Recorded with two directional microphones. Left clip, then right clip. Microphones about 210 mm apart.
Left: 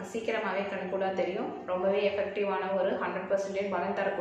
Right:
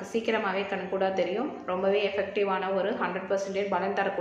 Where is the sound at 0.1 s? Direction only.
55° right (ahead or behind).